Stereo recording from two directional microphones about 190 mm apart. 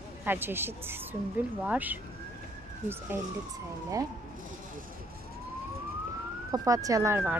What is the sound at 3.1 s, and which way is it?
Speech, 10° right (ahead or behind).